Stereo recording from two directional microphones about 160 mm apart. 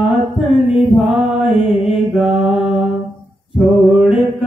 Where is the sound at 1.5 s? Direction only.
35° left (ahead or behind).